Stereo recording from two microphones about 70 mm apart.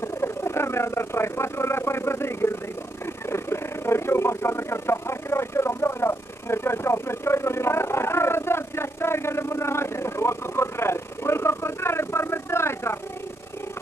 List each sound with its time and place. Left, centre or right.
0.0 s speech: left